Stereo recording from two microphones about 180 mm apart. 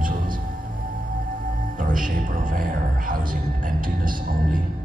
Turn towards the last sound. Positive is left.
turn(degrees=-50)  # may be behind; listen again after turning